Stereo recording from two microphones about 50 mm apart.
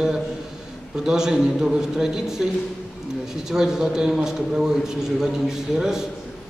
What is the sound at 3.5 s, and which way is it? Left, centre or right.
A man's voice, centre.